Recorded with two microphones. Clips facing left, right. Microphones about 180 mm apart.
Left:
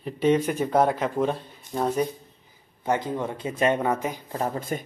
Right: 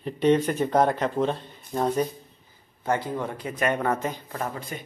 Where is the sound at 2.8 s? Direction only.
20° left (ahead or behind).